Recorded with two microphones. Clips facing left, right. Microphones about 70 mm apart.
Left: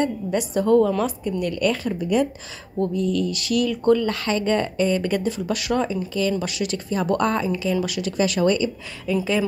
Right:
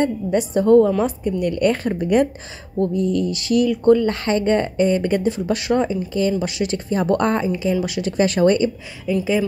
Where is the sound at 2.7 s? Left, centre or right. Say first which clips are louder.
Right 3 dB; right.